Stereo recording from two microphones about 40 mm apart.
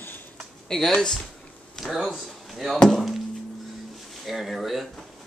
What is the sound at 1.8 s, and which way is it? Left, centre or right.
Speech, centre.